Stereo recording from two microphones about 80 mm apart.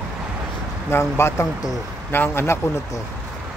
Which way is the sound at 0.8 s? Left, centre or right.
Left.